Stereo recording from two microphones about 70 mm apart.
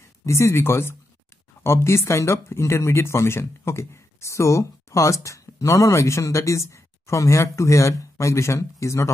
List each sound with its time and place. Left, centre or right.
0.2 s speech: left